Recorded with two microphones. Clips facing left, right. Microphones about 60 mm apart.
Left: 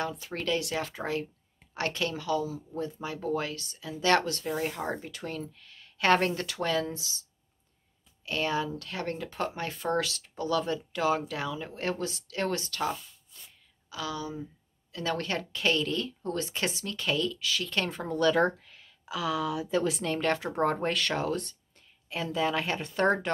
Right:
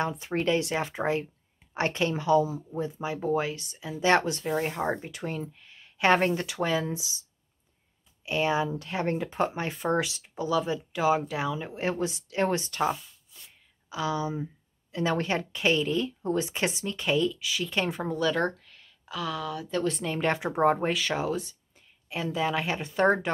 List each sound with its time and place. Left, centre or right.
0.0 s speech: right
8.3 s speech: centre
13.3 s a sound: centre
13.8 s speech: right; by 20.2 s centre
20.2 s speech: centre